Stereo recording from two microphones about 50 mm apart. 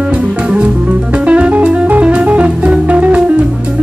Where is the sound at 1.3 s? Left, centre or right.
Right.